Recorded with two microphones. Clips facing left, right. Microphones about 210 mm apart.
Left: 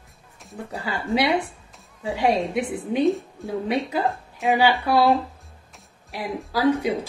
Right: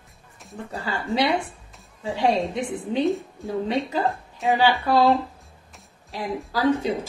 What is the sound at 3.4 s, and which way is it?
A woman's voice, 15° left (ahead or behind).